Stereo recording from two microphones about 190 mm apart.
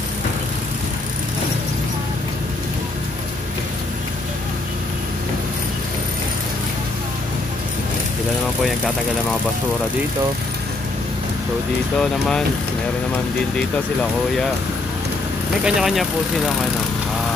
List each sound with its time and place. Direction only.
12.0 s speech: 5° left (ahead or behind)
15.6 s speech: centre (ahead or behind)